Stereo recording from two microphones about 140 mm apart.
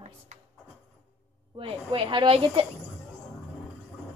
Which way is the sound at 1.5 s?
40° right (ahead or behind).